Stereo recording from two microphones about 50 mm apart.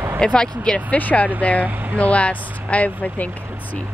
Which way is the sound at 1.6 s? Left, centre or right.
Right.